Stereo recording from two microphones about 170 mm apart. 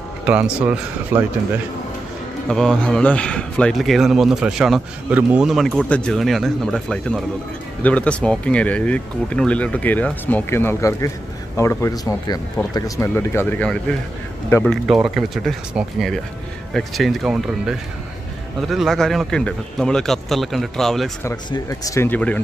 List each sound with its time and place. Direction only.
0.3 s speech: 10° right (ahead or behind)
2.4 s a man's voice: centre (ahead or behind)
21.5 s speech: 20° left (ahead or behind)